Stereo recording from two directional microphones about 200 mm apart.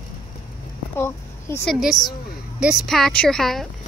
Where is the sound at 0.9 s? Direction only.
10° left (ahead or behind).